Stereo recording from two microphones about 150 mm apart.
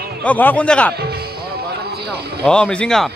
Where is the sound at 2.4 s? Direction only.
5° left (ahead or behind).